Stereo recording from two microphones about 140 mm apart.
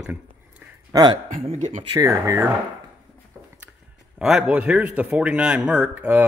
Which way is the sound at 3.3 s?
Centre (ahead or behind).